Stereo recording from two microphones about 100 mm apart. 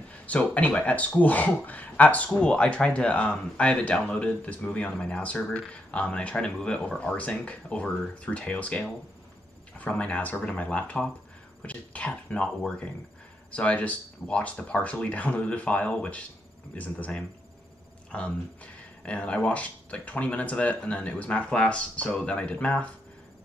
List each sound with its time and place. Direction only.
0.3 s speech: 15° left (ahead or behind)